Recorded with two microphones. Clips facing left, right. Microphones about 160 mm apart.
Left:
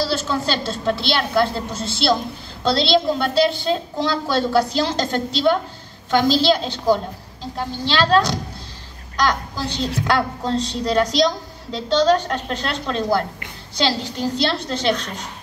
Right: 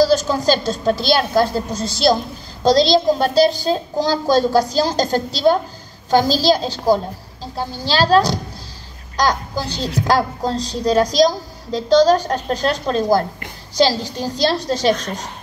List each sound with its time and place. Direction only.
0.0 s a woman's voice: 40° right (ahead or behind)